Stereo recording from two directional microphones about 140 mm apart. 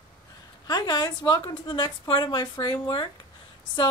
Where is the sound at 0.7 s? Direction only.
30° left (ahead or behind).